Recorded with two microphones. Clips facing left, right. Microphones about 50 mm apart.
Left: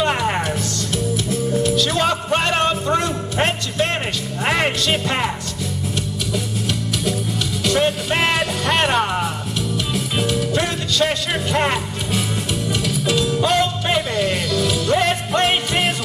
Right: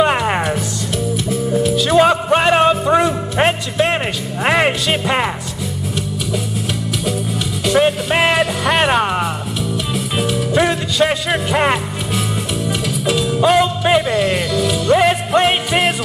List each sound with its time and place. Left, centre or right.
0.0 s music: centre
0.9 s music: centre
7.6 s music: centre